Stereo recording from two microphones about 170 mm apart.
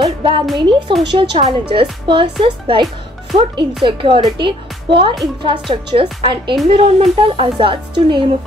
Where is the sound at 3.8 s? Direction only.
30° right (ahead or behind).